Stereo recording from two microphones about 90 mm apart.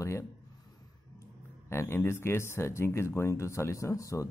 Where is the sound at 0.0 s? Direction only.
30° left (ahead or behind).